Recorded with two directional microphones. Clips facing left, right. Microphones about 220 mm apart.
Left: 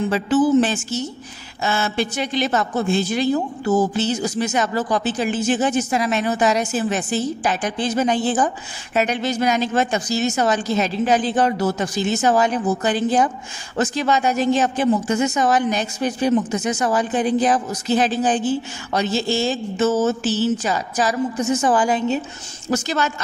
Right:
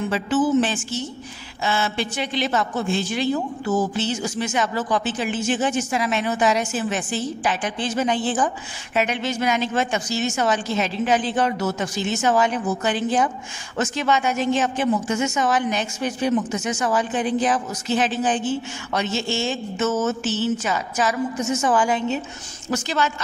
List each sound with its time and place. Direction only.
0.1 s a woman's voice: 40° left (ahead or behind)